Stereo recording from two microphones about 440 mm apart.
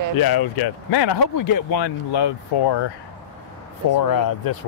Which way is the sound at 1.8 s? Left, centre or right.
Left.